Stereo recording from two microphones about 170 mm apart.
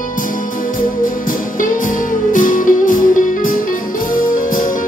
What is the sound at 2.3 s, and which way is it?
Music, 50° left (ahead or behind).